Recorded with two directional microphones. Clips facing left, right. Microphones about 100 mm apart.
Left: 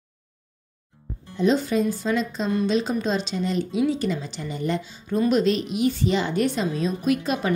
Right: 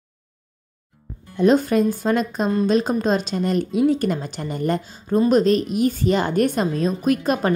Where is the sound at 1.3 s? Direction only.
50° right (ahead or behind).